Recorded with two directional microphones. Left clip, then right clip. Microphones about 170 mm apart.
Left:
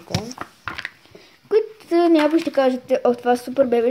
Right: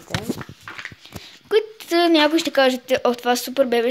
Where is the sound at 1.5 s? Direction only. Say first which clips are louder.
Left 1 dB; centre (ahead or behind).